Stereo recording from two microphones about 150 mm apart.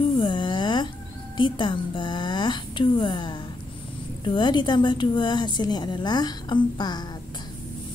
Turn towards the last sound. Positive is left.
turn(degrees=30)  # may be behind; listen again after turning